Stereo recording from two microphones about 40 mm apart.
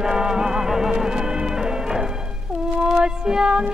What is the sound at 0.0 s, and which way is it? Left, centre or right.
Music, centre.